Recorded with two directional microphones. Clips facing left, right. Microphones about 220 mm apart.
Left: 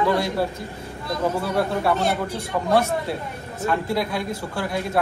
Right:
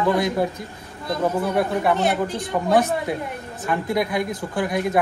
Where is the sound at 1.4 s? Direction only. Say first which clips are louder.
Right 2 dB; 15° right (ahead or behind).